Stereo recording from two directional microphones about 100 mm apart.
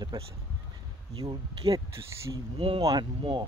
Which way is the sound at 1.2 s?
40° right (ahead or behind).